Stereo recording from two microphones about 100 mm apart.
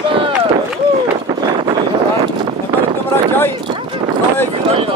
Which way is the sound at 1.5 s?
50° right (ahead or behind).